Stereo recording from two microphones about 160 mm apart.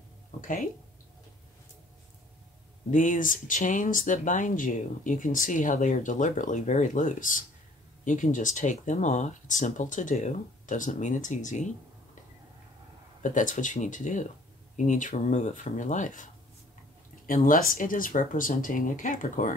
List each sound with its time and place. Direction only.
0.4 s speech: 55° left (ahead or behind)
2.9 s speech: 55° left (ahead or behind)
13.2 s speech: 50° left (ahead or behind)
17.3 s speech: 60° left (ahead or behind)